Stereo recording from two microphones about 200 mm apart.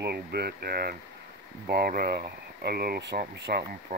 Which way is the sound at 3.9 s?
35° right (ahead or behind).